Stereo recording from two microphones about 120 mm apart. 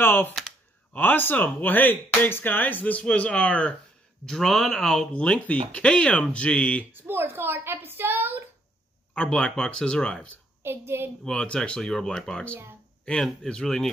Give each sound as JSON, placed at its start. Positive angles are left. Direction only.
{"t": 0.0, "sound": "speech", "side_deg": 15}
{"t": 6.9, "sound": "a woman's voice", "side_deg": -15}
{"t": 9.1, "sound": "speech", "side_deg": 10}
{"t": 10.6, "sound": "a woman's voice", "side_deg": -20}
{"t": 11.2, "sound": "speech", "side_deg": 10}